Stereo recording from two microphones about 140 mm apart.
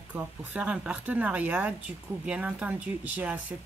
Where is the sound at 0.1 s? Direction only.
10° right (ahead or behind).